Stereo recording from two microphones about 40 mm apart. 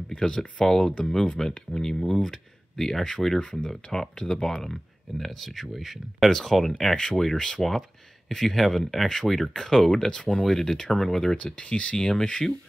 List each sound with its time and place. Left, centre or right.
0.1 s speech: left
0.4 s speech: centre
11.3 s speech: left